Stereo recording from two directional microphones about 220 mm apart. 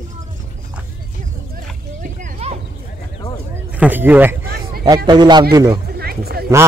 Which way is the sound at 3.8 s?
10° right (ahead or behind).